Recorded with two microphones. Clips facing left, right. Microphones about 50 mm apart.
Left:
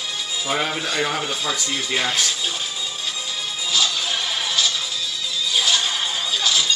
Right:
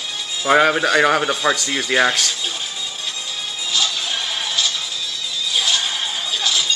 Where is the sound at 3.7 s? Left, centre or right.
Centre.